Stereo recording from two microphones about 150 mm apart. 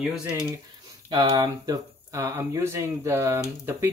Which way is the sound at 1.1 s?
30° right (ahead or behind).